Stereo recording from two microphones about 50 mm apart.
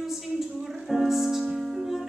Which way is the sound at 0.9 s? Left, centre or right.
Centre.